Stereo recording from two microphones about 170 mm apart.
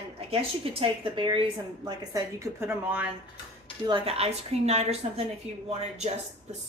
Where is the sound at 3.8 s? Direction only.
35° right (ahead or behind).